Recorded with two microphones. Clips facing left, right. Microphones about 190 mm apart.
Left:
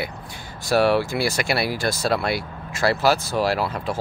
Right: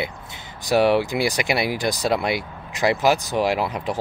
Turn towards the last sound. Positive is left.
turn(degrees=-15)  # may be behind; listen again after turning